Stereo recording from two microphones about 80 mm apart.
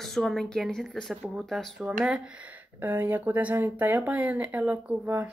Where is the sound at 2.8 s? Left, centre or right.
Right.